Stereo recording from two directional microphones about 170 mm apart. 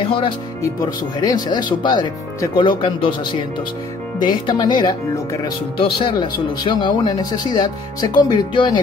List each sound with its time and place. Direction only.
0.0 s speech: 30° left (ahead or behind)